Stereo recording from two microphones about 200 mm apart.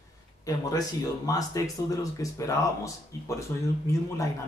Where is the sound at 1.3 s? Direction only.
15° left (ahead or behind).